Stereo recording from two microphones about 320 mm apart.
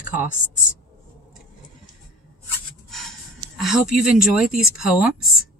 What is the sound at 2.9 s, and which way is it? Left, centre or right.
Speech, centre.